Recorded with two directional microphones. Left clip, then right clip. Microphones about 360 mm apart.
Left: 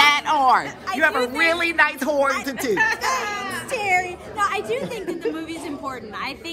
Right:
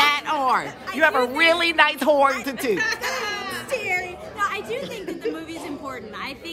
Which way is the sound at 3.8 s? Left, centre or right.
Centre.